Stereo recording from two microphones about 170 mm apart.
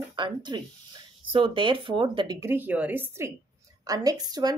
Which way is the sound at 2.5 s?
10° right (ahead or behind).